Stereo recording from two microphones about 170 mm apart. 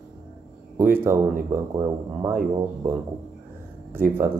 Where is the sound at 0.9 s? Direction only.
15° right (ahead or behind).